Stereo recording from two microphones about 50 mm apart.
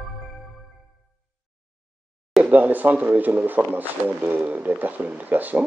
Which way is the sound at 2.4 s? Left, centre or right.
Right.